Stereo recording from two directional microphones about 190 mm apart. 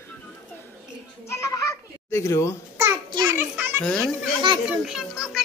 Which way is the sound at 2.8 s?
15° right (ahead or behind).